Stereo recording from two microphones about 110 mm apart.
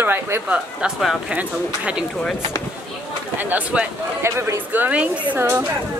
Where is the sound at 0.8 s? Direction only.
5° right (ahead or behind).